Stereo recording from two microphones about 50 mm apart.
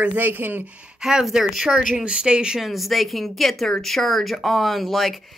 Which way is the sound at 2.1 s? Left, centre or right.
Centre.